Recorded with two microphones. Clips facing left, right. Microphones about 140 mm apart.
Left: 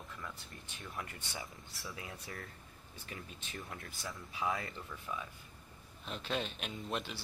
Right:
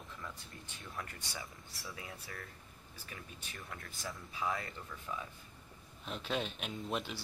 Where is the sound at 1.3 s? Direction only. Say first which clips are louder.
Left 2 dB; 25° left (ahead or behind).